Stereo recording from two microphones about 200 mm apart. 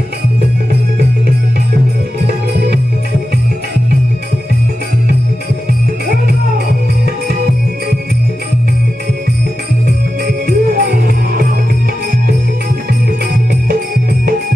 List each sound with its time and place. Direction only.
10.2 s music: 50° right (ahead or behind)